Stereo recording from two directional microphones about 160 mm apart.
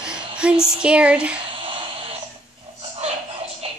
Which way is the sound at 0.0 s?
5° right (ahead or behind).